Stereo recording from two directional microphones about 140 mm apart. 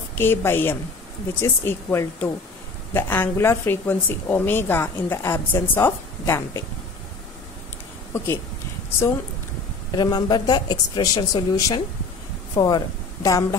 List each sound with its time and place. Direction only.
0.2 s a woman's voice: 15° left (ahead or behind)
9.9 s a woman's voice: 30° left (ahead or behind)